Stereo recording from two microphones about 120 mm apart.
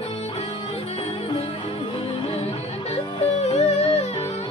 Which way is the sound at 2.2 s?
55° left (ahead or behind).